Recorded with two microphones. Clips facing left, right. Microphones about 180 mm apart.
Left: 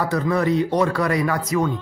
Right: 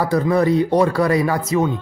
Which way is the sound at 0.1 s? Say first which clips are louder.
Right 5 dB; 30° right (ahead or behind).